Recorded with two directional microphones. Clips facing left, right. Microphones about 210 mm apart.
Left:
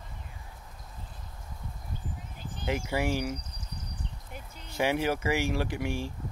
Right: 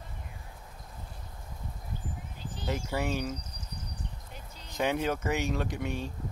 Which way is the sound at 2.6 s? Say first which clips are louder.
Left 2 dB; 10° left (ahead or behind).